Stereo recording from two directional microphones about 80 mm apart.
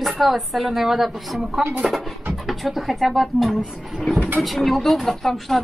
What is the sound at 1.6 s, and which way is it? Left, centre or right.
Speech, centre.